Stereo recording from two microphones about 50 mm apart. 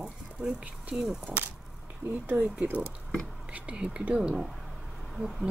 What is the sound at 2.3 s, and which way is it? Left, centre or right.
Speech, right.